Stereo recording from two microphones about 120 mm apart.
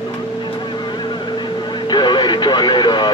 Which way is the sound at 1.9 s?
35° left (ahead or behind).